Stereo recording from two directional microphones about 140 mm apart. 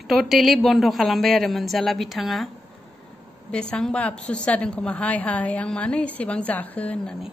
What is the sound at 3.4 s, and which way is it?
A woman's voice, 10° left (ahead or behind).